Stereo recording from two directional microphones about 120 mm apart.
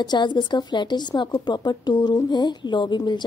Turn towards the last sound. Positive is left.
turn(degrees=40)  # may be behind; listen again after turning